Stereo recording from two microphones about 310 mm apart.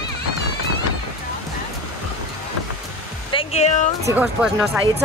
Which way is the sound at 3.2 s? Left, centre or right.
Centre.